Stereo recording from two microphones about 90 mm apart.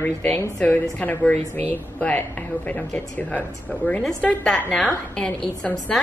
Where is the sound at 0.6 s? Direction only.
20° left (ahead or behind).